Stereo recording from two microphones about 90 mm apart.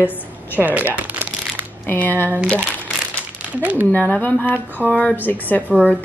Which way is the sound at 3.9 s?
20° left (ahead or behind).